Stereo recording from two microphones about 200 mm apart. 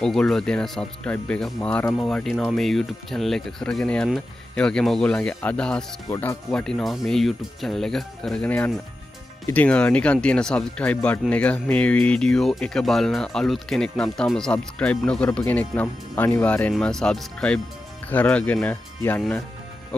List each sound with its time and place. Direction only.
0.0 s speech: centre (ahead or behind)
6.0 s speech: 15° left (ahead or behind)
6.5 s speech: 5° left (ahead or behind)